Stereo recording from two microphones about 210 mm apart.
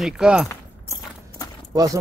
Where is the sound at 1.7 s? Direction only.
15° right (ahead or behind).